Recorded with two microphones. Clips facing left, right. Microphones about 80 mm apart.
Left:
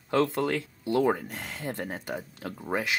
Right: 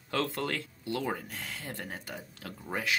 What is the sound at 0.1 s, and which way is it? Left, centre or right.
Speech, left.